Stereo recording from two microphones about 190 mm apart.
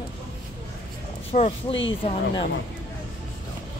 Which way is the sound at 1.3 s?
35° left (ahead or behind).